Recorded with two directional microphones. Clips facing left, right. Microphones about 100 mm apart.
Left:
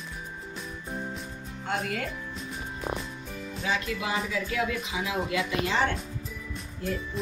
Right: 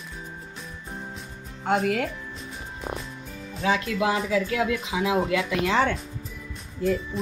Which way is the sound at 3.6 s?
90° right.